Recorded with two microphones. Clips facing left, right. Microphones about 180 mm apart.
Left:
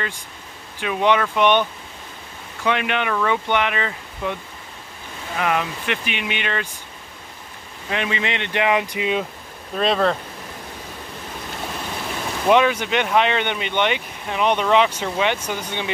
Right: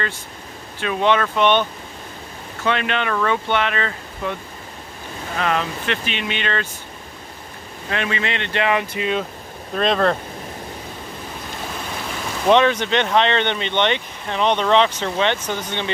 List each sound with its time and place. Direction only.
0.7 s speech: 15° left (ahead or behind)
5.4 s speech: 10° left (ahead or behind)
7.9 s speech: 15° left (ahead or behind)
9.8 s speech: 5° left (ahead or behind)
12.4 s speech: 10° left (ahead or behind)